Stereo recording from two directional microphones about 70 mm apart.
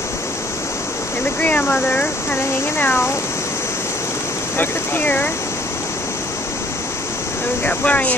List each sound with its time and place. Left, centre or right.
1.4 s speech: left
2.8 s speech: left
4.6 s speech: left
7.6 s speech: left